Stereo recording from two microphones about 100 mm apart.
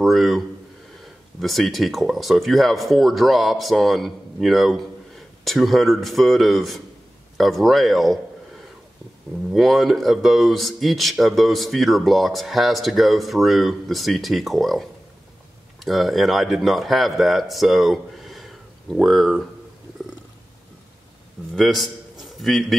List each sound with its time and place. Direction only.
0.0 s speech: centre (ahead or behind)
1.4 s a man's voice: centre (ahead or behind)
21.5 s a man's voice: centre (ahead or behind)